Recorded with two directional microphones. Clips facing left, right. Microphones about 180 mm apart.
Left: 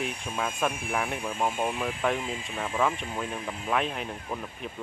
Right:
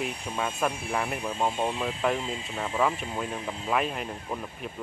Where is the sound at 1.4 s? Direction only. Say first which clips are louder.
Right 1 dB; 25° right (ahead or behind).